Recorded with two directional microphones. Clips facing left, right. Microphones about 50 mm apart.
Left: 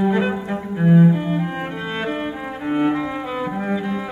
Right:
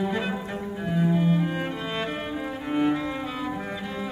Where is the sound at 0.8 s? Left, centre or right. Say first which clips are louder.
Left 9 dB; left.